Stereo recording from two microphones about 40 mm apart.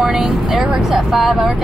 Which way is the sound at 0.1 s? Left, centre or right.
Right.